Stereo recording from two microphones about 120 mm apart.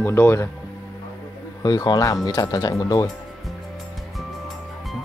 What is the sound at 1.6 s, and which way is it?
Speech, 35° left (ahead or behind).